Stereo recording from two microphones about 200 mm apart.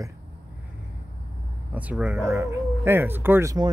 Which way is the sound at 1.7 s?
5° right (ahead or behind).